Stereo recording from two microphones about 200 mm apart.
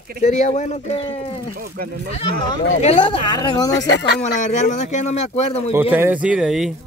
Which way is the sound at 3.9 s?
60° left (ahead or behind).